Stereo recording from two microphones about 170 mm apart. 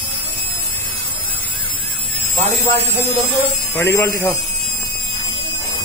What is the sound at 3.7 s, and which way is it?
Speech, 15° left (ahead or behind).